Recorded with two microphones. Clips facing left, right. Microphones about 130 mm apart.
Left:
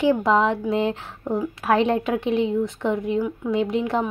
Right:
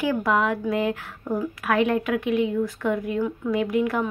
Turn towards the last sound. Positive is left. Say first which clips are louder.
# left 1 dB
turn(degrees=25)  # may be behind; listen again after turning